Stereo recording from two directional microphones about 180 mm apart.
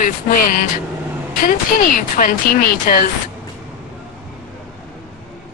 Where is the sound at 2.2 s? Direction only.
50° left (ahead or behind).